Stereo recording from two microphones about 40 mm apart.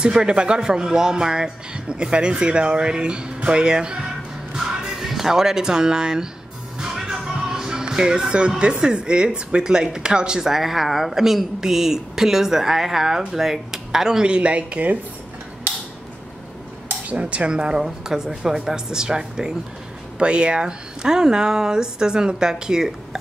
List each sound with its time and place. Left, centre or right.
0.0 s speech: right
4.6 s speech: centre
6.8 s music: centre
8.8 s speech: right
10.5 s speech: centre
14.3 s speech: right
17.1 s speech: right; by 22.9 s centre